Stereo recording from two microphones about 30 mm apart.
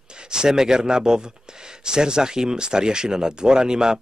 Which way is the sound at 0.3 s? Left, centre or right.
Right.